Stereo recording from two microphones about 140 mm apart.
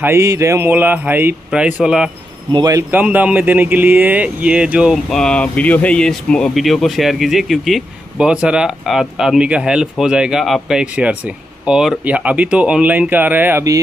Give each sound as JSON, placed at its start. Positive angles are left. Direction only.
{"t": 0.0, "sound": "speech", "side_deg": -20}
{"t": 2.5, "sound": "a man's voice", "side_deg": -25}
{"t": 2.9, "sound": "speech", "side_deg": -10}
{"t": 4.9, "sound": "speech", "side_deg": 5}